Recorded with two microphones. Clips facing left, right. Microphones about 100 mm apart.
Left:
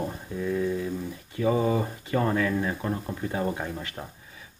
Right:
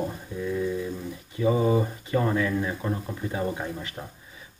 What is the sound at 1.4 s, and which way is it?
Speech, 15° right (ahead or behind).